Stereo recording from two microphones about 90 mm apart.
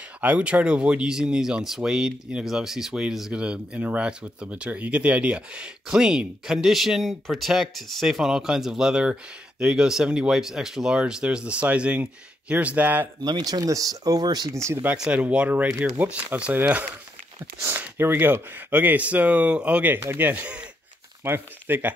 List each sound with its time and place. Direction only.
0.2 s speech: 15° right (ahead or behind)
13.2 s speech: 45° right (ahead or behind)
14.5 s speech: 35° right (ahead or behind)
15.0 s speech: 15° right (ahead or behind)